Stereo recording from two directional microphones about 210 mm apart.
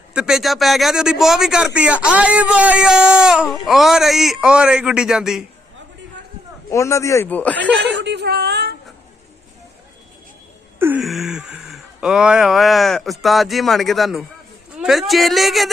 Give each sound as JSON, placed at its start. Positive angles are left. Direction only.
{"t": 0.1, "sound": "a man's voice", "side_deg": -5}
{"t": 6.7, "sound": "speech", "side_deg": 15}
{"t": 7.8, "sound": "a sound", "side_deg": -55}
{"t": 10.8, "sound": "a man's voice", "side_deg": -5}